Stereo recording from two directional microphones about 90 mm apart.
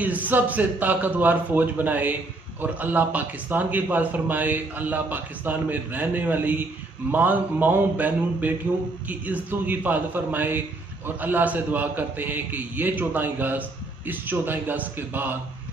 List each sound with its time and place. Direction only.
0.0 s a man's voice: 20° right (ahead or behind)